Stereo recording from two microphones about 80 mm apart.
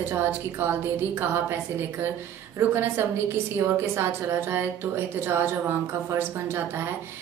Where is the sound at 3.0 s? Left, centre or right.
Right.